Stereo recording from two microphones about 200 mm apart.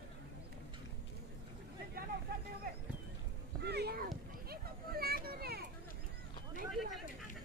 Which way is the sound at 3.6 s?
55° right (ahead or behind).